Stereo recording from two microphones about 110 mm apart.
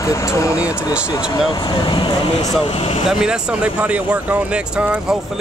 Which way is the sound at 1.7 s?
40° left (ahead or behind).